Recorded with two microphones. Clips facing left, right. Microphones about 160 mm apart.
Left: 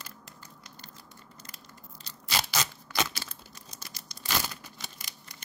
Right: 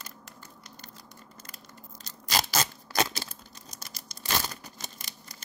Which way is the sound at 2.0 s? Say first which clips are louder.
Right 3 dB; 40° right (ahead or behind).